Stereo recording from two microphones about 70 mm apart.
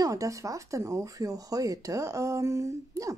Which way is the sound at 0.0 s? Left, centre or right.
Right.